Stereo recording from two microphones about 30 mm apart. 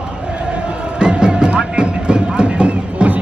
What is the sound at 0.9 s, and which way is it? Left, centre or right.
Music, right.